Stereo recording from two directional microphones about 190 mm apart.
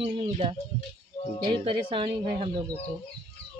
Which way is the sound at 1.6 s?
25° right (ahead or behind).